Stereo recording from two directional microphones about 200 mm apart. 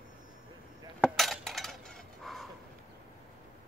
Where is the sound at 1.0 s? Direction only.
Centre (ahead or behind).